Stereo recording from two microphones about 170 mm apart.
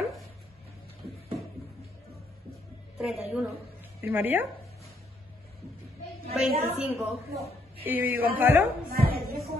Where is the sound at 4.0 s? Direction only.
10° right (ahead or behind).